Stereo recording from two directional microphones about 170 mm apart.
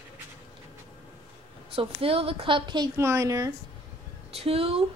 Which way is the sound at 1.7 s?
35° right (ahead or behind).